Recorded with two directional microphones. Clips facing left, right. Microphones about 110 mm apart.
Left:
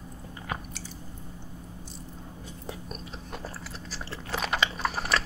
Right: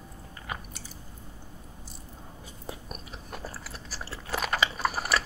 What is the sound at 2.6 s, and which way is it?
Biting, 5° right (ahead or behind).